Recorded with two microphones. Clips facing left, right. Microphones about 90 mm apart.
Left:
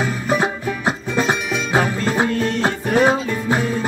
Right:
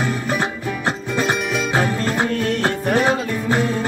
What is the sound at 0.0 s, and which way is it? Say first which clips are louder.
Music: left 2 dB; 15° left (ahead or behind).